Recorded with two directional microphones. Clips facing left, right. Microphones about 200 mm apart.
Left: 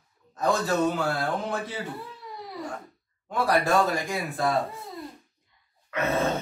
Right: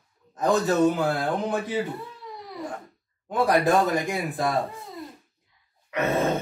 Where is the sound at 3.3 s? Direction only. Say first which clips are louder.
Right 3 dB; 20° right (ahead or behind).